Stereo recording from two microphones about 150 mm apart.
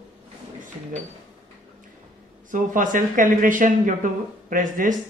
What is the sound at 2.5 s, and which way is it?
Speech, 60° right (ahead or behind).